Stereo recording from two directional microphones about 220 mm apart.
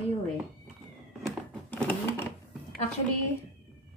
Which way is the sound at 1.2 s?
5° left (ahead or behind).